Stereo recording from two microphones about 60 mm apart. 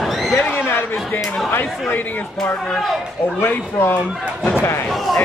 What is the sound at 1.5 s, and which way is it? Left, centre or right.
Speech, left.